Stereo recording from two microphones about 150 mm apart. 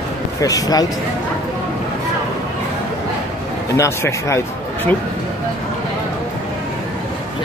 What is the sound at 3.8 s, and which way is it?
Speech, 20° left (ahead or behind).